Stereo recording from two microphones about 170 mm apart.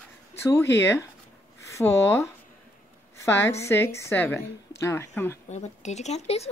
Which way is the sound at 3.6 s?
15° left (ahead or behind).